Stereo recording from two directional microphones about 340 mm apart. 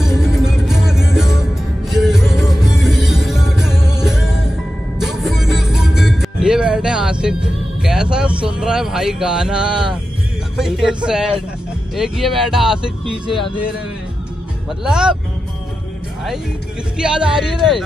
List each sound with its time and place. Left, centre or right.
0.0 s music: centre
7.8 s speech: centre
14.9 s speech: centre
17.0 s speech: centre